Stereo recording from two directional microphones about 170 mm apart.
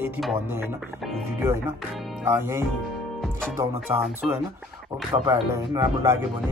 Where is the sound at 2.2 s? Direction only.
15° right (ahead or behind).